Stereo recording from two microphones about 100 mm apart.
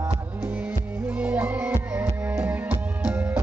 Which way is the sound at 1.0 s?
15° right (ahead or behind).